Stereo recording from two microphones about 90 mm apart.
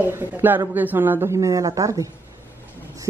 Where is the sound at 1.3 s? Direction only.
40° right (ahead or behind).